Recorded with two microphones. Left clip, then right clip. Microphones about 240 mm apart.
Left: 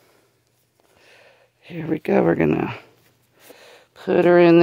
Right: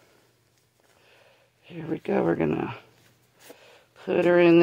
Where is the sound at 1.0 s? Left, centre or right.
Left.